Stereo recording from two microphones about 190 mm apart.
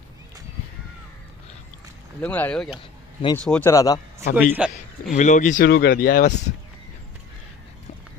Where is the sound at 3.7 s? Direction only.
20° left (ahead or behind).